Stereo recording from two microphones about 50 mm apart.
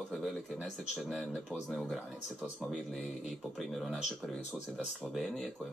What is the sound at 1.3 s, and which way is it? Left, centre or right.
Speech, centre.